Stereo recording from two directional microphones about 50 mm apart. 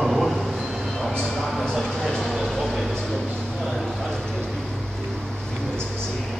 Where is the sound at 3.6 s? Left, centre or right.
Centre.